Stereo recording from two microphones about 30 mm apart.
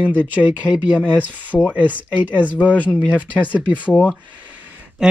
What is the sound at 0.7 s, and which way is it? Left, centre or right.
Speech, right.